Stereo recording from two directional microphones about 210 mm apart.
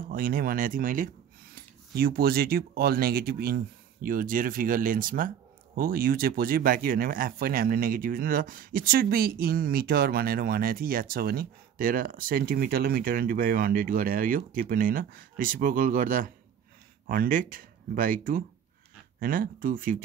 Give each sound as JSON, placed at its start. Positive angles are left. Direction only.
{"t": 0.1, "sound": "speech", "side_deg": -45}